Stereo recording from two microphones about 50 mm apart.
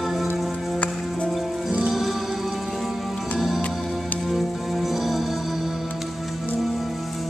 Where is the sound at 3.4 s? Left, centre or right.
Centre.